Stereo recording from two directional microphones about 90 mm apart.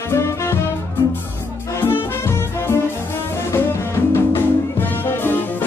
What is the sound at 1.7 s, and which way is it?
Music, 25° left (ahead or behind).